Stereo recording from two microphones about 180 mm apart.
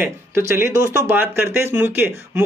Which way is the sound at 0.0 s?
15° right (ahead or behind).